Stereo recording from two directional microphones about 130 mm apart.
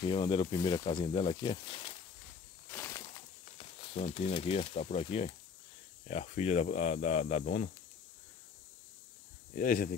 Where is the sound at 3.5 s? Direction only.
50° left (ahead or behind).